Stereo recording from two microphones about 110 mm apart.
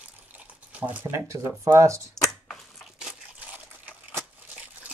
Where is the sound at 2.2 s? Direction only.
5° left (ahead or behind).